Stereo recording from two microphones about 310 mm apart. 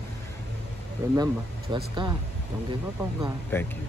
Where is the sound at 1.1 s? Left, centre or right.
Centre.